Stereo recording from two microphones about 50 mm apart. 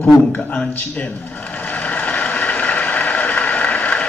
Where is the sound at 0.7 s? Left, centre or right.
Left.